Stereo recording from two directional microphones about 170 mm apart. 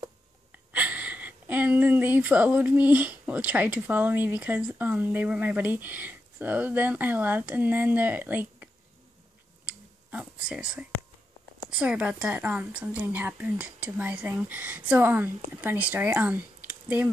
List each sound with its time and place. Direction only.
0.7 s speech: 10° right (ahead or behind)
10.5 s a woman's voice: 5° right (ahead or behind)